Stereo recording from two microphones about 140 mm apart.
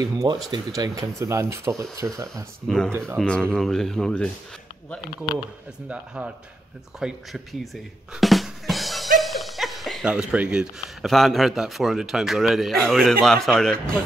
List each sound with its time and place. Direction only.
0.0 s speech: 30° right (ahead or behind)
3.2 s speech: 5° left (ahead or behind)
5.9 s speech: 10° right (ahead or behind)